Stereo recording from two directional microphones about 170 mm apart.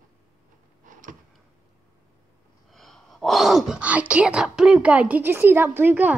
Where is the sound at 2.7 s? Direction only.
Centre (ahead or behind).